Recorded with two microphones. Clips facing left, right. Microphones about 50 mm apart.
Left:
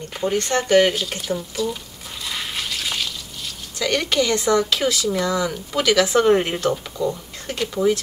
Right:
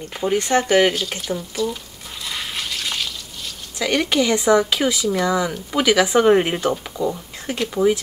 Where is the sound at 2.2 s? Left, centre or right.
Centre.